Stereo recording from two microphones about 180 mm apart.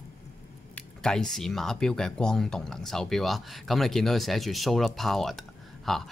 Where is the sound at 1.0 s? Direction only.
5° left (ahead or behind).